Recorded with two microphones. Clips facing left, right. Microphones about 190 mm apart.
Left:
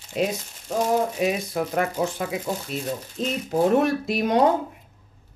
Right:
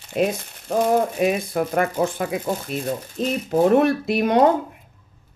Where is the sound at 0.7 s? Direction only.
55° right (ahead or behind).